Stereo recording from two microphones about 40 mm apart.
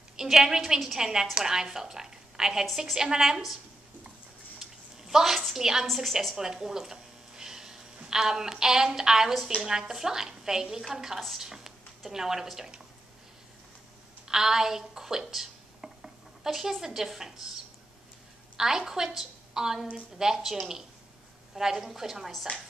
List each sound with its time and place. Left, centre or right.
0.2 s a woman's voice: centre
4.6 s a sound: centre
5.6 s a woman's voice: centre
5.9 s a woman's voice: centre
6.3 s a woman's voice: centre
11.4 s a woman's voice: centre
14.2 s a sound: centre
16.8 s a woman's voice: centre
18.6 s a woman's voice: centre
21.5 s a woman's voice: centre